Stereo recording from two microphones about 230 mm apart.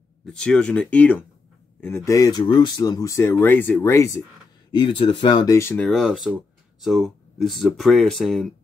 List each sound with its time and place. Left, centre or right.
0.3 s speech: centre